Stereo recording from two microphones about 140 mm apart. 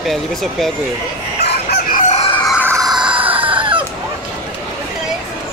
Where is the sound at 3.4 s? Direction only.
35° right (ahead or behind).